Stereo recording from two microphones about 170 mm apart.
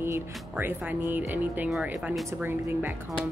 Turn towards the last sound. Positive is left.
turn(degrees=-15)  # may be behind; listen again after turning